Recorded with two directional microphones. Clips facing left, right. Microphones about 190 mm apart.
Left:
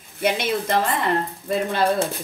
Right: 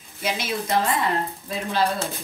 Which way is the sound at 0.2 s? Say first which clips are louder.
Left 5 dB; 60° left (ahead or behind).